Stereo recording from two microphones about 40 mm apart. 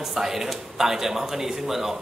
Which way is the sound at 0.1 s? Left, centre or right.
Centre.